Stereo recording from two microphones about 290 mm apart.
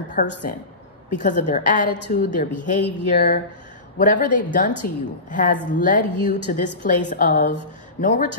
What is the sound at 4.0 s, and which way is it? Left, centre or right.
A woman's voice, left.